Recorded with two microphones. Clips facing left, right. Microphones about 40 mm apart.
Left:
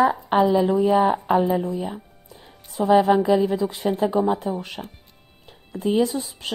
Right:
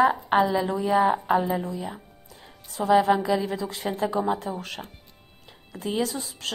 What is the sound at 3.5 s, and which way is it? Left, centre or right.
A woman's voice, centre.